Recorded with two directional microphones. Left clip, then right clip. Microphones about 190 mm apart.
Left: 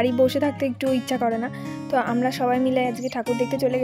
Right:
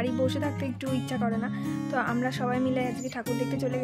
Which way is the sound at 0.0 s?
30° left (ahead or behind).